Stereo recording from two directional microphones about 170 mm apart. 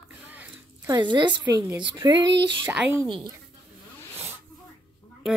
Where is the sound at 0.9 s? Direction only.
25° right (ahead or behind).